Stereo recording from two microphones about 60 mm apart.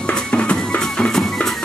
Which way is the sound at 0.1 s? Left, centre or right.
Centre.